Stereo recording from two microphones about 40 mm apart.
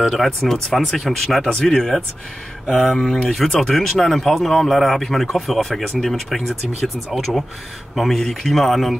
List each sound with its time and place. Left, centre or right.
0.0 s a man's voice: centre
1.5 s a man's voice: centre
7.9 s a man's voice: centre